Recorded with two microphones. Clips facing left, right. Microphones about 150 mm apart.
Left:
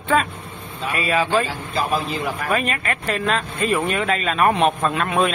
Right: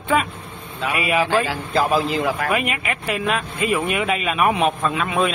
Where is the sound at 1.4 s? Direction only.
90° right.